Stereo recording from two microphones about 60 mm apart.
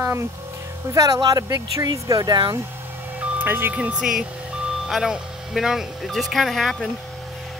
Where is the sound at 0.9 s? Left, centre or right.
Right.